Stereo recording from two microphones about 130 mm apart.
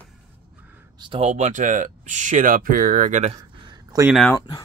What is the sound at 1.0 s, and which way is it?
Speech, 40° right (ahead or behind).